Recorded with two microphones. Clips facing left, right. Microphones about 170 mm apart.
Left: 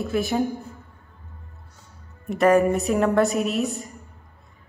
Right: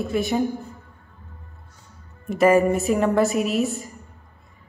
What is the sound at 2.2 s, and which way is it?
A woman's voice, centre (ahead or behind).